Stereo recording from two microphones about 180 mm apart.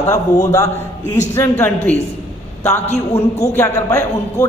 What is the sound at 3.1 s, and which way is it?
A man's voice, 15° left (ahead or behind).